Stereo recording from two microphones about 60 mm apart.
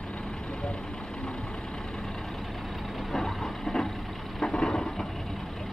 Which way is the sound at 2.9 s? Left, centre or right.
Centre.